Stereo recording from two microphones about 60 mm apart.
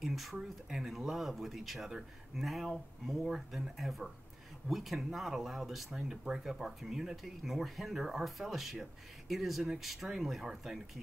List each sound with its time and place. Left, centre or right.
0.0 s speech: centre